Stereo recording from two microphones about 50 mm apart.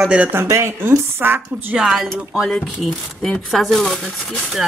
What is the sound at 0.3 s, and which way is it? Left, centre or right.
A woman's voice, right.